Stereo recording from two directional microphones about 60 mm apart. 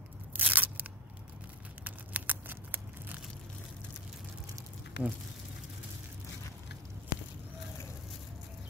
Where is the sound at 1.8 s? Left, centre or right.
Right.